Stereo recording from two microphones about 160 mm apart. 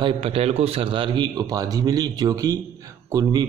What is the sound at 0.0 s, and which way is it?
Speech, 40° right (ahead or behind).